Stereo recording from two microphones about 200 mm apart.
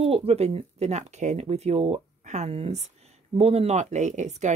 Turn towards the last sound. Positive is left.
turn(degrees=-35)  # may be behind; listen again after turning